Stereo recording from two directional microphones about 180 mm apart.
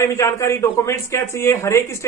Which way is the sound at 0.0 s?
15° left (ahead or behind).